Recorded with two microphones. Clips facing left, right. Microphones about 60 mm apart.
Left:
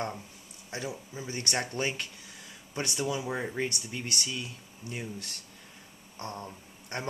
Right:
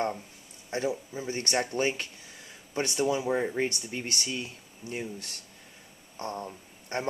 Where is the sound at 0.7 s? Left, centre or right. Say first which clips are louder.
Right 7 dB; right.